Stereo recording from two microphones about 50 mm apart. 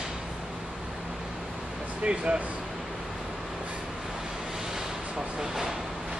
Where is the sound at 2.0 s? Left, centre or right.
Centre.